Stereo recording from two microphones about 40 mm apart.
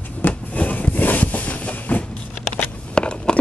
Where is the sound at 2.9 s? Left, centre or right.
Left.